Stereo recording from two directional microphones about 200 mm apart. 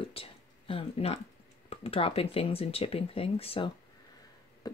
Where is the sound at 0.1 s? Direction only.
30° left (ahead or behind).